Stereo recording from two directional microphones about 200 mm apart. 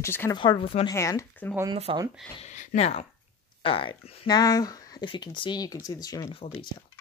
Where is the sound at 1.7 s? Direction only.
25° right (ahead or behind).